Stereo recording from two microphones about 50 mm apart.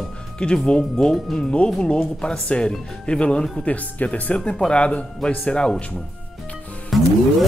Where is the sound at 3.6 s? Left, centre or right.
Left.